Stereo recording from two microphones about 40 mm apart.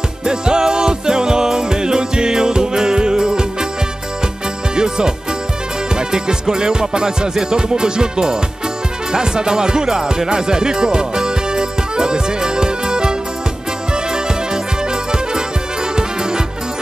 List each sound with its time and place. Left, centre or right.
0.2 s music: centre
4.7 s music: centre
9.1 s speech: centre
13.9 s music: centre
16.0 s music: centre